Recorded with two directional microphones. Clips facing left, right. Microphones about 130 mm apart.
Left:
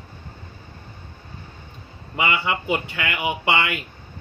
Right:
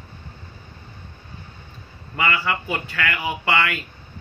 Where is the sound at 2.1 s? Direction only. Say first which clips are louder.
Even; 20° left (ahead or behind).